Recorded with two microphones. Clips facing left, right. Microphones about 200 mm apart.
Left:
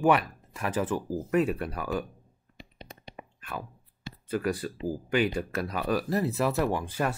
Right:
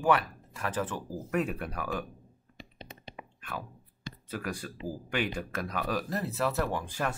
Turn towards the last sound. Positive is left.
turn(degrees=5)  # may be behind; listen again after turning